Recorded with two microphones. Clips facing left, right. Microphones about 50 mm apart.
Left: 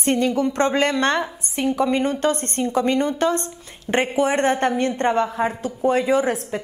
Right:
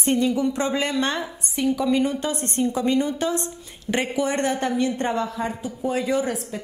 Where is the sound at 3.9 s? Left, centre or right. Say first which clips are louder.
Left 4 dB; left.